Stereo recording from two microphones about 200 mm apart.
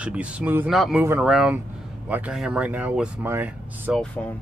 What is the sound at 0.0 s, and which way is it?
Speech, 5° right (ahead or behind).